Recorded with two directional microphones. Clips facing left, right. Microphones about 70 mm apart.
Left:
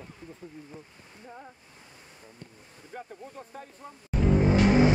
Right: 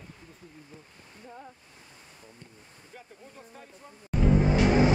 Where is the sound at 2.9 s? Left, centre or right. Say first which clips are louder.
Left 8 dB; left.